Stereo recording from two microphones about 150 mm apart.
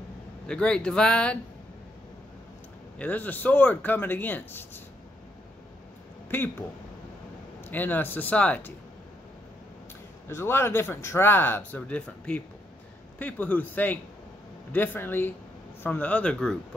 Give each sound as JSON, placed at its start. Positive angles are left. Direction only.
{"t": 0.5, "sound": "speech", "side_deg": 5}
{"t": 3.0, "sound": "speech", "side_deg": 10}
{"t": 6.3, "sound": "speech", "side_deg": 15}
{"t": 7.6, "sound": "speech", "side_deg": 10}
{"t": 10.2, "sound": "speech", "side_deg": 15}